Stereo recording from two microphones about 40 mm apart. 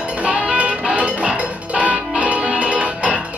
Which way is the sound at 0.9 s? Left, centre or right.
Right.